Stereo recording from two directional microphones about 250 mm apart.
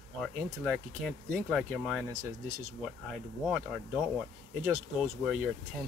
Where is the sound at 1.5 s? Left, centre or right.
Centre.